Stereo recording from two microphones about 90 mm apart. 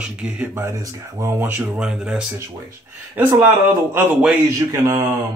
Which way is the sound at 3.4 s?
20° right (ahead or behind).